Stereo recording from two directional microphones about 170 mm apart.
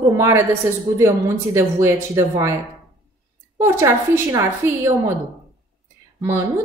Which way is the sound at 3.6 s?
15° right (ahead or behind).